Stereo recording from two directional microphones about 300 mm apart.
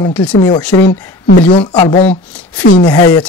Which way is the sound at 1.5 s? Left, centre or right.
Centre.